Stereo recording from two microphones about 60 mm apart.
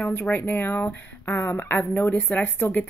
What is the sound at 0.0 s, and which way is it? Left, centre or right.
Speech, left.